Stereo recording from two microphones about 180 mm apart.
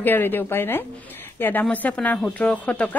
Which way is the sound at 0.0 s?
10° left (ahead or behind).